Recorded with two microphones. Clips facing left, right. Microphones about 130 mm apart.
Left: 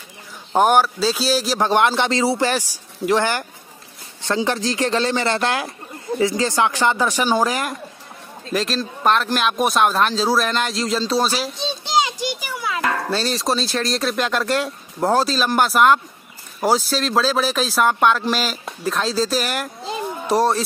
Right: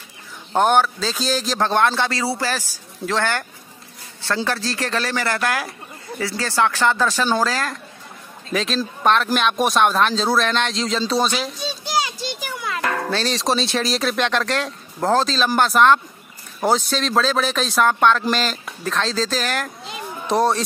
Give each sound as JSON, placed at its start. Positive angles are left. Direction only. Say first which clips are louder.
{"t": 0.5, "sound": "a man's voice", "louder": "left 1 dB", "side_deg": 10}
{"t": 8.5, "sound": "speech", "louder": "even", "side_deg": 0}
{"t": 11.5, "sound": "a child's voice", "louder": "left 3 dB", "side_deg": 20}